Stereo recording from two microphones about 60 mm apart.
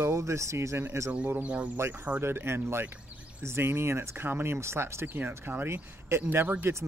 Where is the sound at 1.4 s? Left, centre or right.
Right.